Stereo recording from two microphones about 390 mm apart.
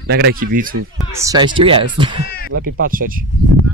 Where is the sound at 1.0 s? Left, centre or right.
Centre.